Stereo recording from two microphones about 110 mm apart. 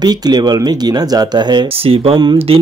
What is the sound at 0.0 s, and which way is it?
Speech, 40° right (ahead or behind).